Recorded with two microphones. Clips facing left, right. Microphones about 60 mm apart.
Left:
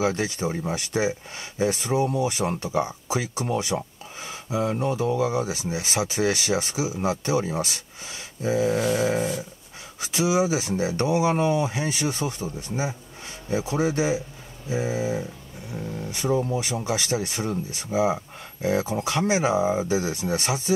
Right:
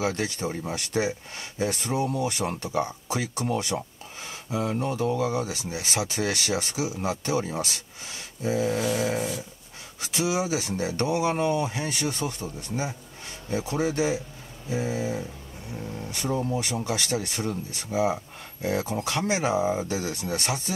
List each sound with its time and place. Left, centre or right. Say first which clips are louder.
0.0 s speech: left 3 dB; centre